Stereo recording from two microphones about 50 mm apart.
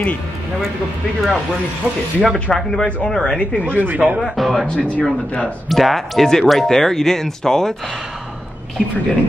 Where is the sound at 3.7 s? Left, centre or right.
Right.